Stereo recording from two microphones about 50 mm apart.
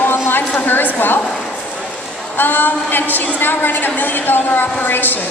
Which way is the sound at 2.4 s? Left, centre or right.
Left.